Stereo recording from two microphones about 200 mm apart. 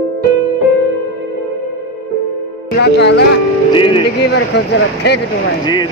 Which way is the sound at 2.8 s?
60° left (ahead or behind).